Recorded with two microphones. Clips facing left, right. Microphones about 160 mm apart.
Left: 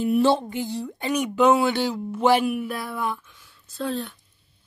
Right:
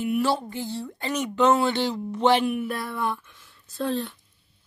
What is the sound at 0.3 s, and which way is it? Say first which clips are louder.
A woman's voice: left 4 dB; 20° left (ahead or behind).